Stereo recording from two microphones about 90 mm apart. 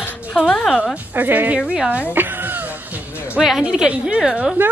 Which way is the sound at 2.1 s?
20° right (ahead or behind).